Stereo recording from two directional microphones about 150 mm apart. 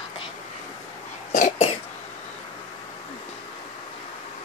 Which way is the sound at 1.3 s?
50° left (ahead or behind).